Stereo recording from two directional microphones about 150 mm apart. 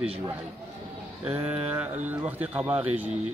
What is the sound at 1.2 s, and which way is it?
Speech, 10° right (ahead or behind).